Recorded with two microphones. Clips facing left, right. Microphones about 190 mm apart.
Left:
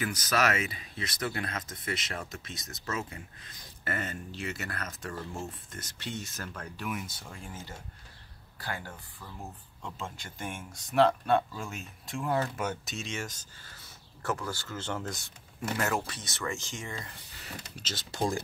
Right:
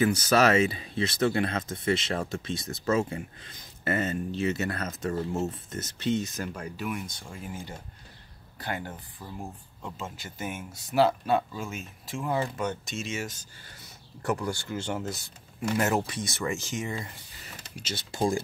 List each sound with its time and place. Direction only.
0.0 s speech: 30° right (ahead or behind)
6.8 s speech: 5° left (ahead or behind)
8.5 s speech: 20° right (ahead or behind)
9.8 s speech: centre (ahead or behind)
15.8 s speech: 20° right (ahead or behind)